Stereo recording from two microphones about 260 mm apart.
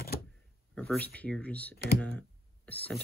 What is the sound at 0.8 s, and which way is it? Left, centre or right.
Speech, centre.